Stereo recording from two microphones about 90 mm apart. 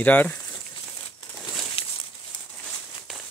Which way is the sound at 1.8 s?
90° left.